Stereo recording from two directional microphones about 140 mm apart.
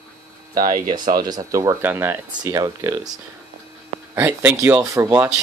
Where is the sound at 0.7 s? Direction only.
30° right (ahead or behind); by 2.2 s 15° right (ahead or behind).